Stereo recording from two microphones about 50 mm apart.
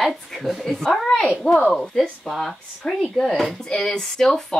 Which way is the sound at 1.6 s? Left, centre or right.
Left.